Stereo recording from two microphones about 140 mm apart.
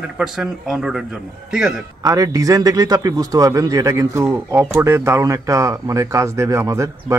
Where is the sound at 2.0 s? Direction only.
25° right (ahead or behind).